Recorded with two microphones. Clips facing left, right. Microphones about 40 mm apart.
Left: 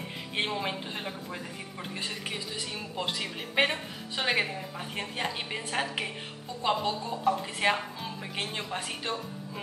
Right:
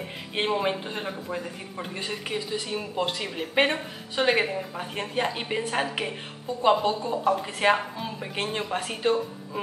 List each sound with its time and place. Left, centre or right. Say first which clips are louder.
0.4 s a woman's voice: right 6 dB; centre